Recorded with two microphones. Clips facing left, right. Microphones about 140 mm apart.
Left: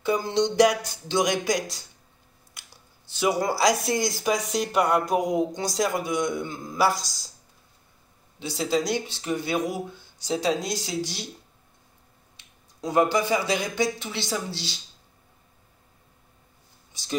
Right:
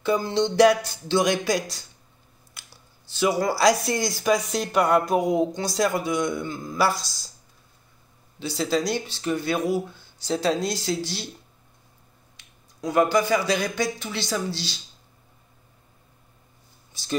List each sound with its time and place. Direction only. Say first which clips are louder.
0.0 s speech: right 1 dB; 15° left (ahead or behind)
8.4 s speech: right 1 dB; 20° left (ahead or behind)
12.8 s speech: right 1 dB; 25° left (ahead or behind)